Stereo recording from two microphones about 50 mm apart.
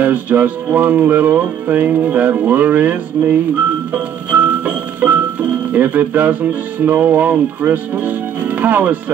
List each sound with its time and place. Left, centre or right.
0.0 s music: right